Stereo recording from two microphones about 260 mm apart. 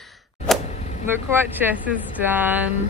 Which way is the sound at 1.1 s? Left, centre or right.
Centre.